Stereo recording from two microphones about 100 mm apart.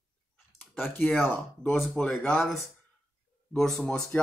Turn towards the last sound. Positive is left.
turn(degrees=10)  # may be behind; listen again after turning